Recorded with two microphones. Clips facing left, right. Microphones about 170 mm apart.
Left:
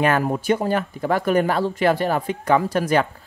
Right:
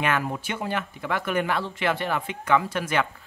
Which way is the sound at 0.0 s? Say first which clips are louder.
Left 6 dB; 40° left (ahead or behind).